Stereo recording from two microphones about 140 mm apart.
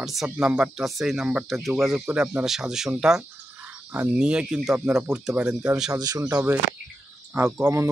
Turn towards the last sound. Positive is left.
turn(degrees=-20)  # may be behind; listen again after turning